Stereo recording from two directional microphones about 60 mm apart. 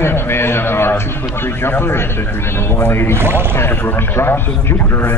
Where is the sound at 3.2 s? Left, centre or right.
Right.